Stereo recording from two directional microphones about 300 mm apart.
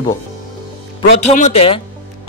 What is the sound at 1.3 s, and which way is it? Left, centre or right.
Speech, left.